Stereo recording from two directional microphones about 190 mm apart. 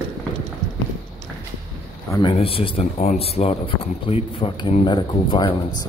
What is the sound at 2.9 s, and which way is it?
Speech, 40° left (ahead or behind).